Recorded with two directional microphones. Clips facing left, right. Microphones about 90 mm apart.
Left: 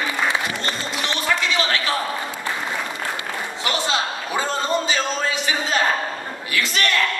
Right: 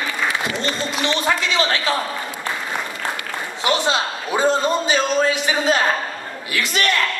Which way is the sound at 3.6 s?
20° right (ahead or behind).